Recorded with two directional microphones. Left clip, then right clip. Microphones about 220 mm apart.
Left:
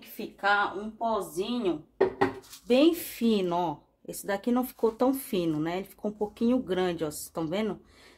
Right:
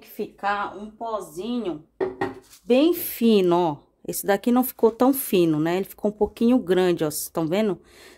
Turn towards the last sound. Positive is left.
turn(degrees=-40)  # may be behind; listen again after turning